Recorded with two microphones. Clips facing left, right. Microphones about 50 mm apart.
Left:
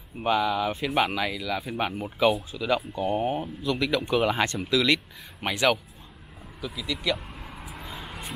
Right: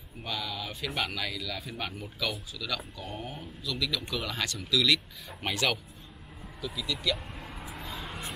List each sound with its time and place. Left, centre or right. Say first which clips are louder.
0.2 s speech: left 12 dB; left
5.4 s speech: left 6 dB; centre
7.3 s vehicle: left 1 dB; centre